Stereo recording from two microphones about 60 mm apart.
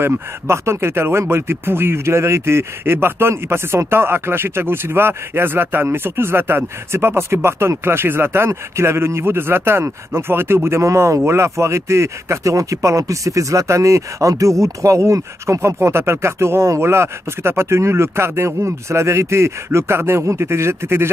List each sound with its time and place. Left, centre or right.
0.0 s speech: right